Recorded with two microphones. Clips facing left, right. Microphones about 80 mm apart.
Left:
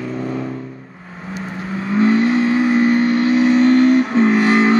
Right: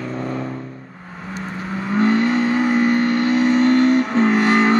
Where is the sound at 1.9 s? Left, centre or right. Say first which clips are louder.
Left 2 dB; right.